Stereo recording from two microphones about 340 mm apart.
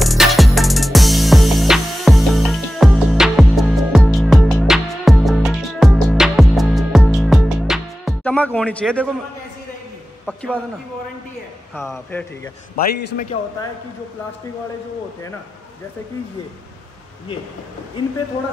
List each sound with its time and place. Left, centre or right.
0.0 s music: centre
10.2 s speech: centre
11.7 s speech: centre
12.7 s a man's voice: left